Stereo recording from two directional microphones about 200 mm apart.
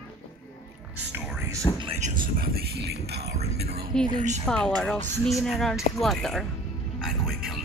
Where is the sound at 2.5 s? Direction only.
50° right (ahead or behind).